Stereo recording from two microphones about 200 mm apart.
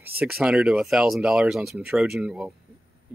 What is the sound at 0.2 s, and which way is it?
Speech, 5° right (ahead or behind).